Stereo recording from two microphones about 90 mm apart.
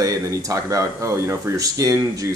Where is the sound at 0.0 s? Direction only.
40° right (ahead or behind).